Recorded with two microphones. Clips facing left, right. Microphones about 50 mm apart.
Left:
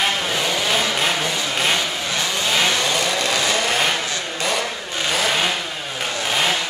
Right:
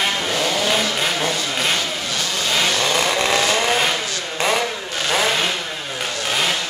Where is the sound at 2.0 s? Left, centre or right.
Left.